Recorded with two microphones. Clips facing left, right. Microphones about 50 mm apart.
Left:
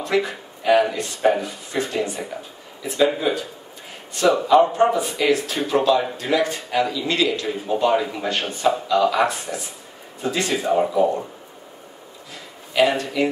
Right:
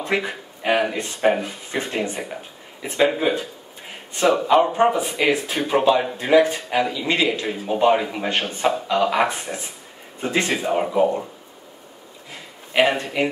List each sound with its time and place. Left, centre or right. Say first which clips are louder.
0.0 s a man's voice: left 2 dB; right
12.7 s speech: even; right